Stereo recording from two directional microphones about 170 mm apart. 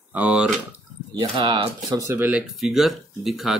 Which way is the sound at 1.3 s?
30° right (ahead or behind).